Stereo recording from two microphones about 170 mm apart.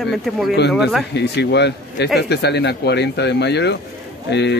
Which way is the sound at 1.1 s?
80° left.